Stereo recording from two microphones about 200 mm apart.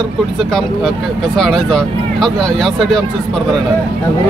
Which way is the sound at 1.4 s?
5° left (ahead or behind).